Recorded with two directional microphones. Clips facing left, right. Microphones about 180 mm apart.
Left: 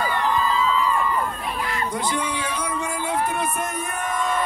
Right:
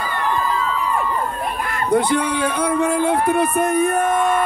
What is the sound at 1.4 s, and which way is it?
Speech, 50° right (ahead or behind).